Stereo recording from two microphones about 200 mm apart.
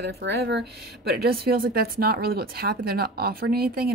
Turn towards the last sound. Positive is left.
turn(degrees=-50)  # may be behind; listen again after turning